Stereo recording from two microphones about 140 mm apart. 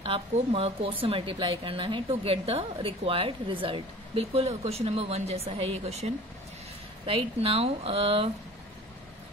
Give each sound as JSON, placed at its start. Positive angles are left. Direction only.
{"t": 0.0, "sound": "speech", "side_deg": -45}